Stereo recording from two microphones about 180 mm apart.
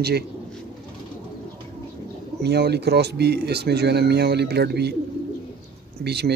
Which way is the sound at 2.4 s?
65° right (ahead or behind).